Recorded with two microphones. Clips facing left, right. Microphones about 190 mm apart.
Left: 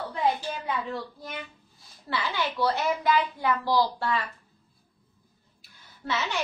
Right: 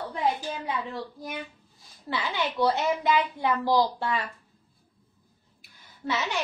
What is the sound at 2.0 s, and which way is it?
A woman's voice, 20° right (ahead or behind).